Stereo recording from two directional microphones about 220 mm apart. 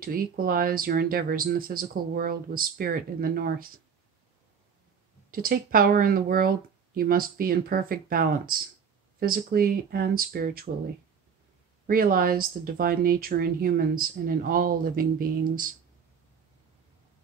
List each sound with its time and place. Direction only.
0.0 s speech: 40° right (ahead or behind)
5.3 s speech: 40° right (ahead or behind)
11.9 s speech: 40° right (ahead or behind)